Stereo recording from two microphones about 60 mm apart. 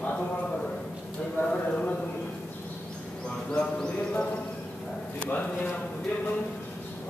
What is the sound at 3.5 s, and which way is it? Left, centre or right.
Speech, centre.